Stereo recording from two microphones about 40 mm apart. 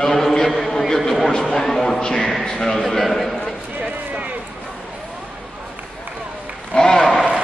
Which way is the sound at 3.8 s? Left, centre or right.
Right.